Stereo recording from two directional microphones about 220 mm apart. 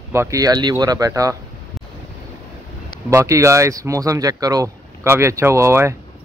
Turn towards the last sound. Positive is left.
turn(degrees=-10)  # may be behind; listen again after turning